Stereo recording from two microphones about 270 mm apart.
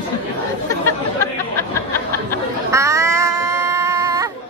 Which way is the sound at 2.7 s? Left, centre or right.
Centre.